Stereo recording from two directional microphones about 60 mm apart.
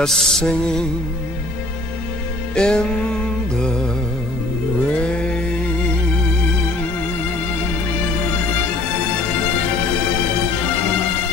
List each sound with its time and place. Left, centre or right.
0.0 s music: centre
2.5 s music: centre
4.9 s a sound: centre